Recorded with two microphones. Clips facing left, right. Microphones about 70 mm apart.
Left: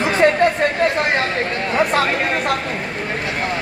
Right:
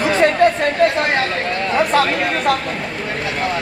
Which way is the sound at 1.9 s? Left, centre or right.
Left.